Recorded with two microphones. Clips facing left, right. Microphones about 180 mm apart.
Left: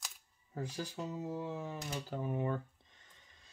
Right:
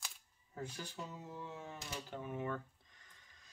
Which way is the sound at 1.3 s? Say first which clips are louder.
Left 8 dB; 35° left (ahead or behind).